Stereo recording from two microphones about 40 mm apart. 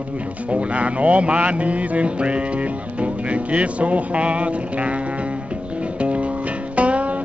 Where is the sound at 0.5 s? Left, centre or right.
Right.